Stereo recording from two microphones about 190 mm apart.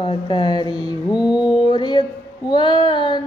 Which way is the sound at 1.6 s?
25° left (ahead or behind).